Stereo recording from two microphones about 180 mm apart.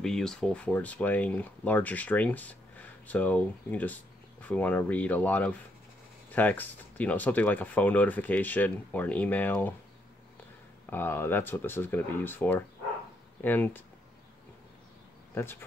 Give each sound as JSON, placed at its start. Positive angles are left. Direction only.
{"t": 0.0, "sound": "speech", "side_deg": 5}
{"t": 10.9, "sound": "speech", "side_deg": 10}
{"t": 15.4, "sound": "speech", "side_deg": 15}